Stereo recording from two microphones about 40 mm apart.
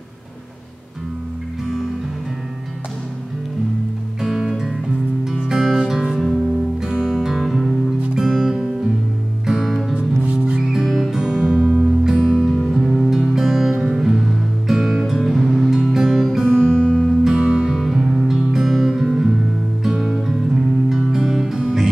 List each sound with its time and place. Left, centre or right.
4.2 s music: centre
8.1 s music: centre
10.2 s music: right
10.6 s music: centre
12.8 s music: centre
13.1 s music: centre
16.4 s guitar: right
16.7 s music: left
17.3 s music: centre
17.8 s music: centre